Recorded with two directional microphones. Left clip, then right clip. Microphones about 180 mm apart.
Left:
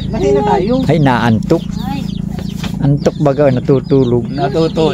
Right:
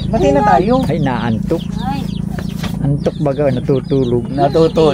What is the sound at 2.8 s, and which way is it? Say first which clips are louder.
Speech: left 4 dB; 35° left (ahead or behind).